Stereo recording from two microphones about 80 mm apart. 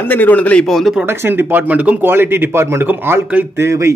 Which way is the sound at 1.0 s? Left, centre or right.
Right.